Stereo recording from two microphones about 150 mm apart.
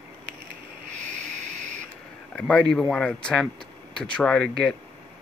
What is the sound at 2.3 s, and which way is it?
Speech, 10° left (ahead or behind).